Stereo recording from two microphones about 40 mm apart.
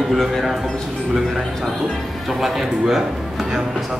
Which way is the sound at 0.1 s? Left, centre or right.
Centre.